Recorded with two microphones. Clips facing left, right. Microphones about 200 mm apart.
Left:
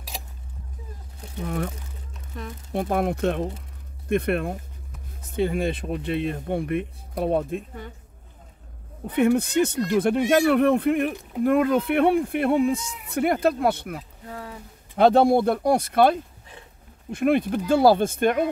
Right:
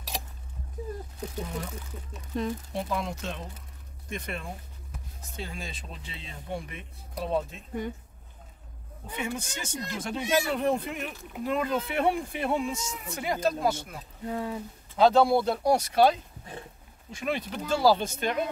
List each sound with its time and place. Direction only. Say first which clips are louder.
2.3 s speech: right 7 dB; 20° right (ahead or behind)
2.7 s speech: left 8 dB; 55° left (ahead or behind)
9.0 s speech: left 14 dB; 60° left (ahead or behind)